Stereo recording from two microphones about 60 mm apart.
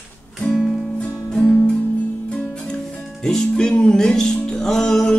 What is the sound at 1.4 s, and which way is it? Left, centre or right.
Music, left.